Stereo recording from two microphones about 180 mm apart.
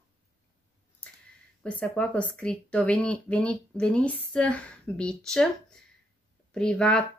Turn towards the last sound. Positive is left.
turn(degrees=5)  # may be behind; listen again after turning